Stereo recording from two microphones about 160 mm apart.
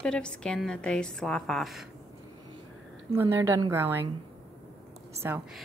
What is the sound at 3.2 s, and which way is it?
Speech, 20° right (ahead or behind).